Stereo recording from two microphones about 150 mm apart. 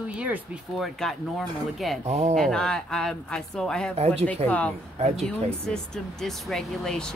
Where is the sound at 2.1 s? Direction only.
45° right (ahead or behind).